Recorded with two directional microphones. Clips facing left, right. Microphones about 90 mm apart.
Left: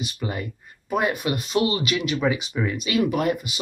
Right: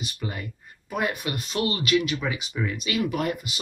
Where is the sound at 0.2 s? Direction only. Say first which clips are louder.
Left 4 dB; 20° left (ahead or behind).